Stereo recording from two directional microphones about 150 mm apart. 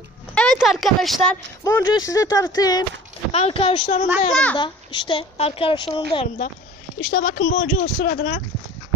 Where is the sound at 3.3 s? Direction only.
40° left (ahead or behind).